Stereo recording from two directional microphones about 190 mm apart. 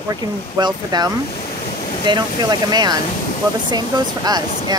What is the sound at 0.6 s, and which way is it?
Speech, 20° right (ahead or behind).